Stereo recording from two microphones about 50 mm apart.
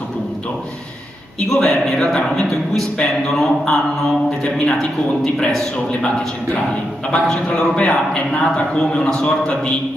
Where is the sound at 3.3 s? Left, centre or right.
Centre.